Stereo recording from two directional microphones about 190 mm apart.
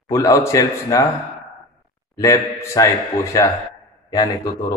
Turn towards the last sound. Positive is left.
turn(degrees=20)  # may be behind; listen again after turning